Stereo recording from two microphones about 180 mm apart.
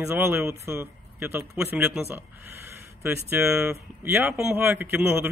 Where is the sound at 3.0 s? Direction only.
5° right (ahead or behind).